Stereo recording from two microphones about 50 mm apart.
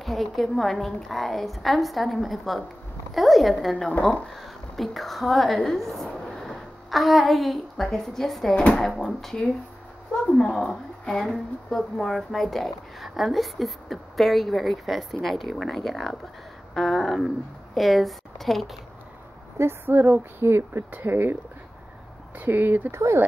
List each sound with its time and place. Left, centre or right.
0.0 s a woman's voice: centre
19.6 s speech: right
22.4 s speech: right
22.8 s speech: right